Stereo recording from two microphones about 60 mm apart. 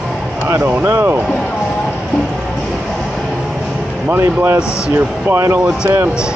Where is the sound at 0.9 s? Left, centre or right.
Right.